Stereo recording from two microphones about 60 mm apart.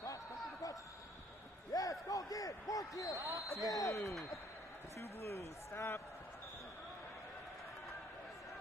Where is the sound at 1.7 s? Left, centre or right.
Left.